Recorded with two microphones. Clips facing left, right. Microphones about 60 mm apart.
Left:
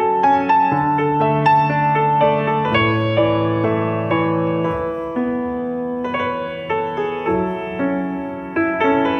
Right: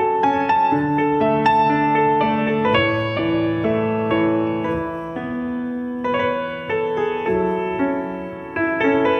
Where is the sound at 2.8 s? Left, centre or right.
Left.